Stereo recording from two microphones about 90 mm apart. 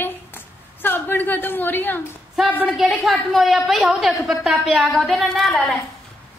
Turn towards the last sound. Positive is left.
turn(degrees=0)  # may be behind; listen again after turning